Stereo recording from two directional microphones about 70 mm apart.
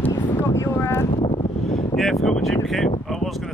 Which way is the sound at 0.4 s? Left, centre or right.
Left.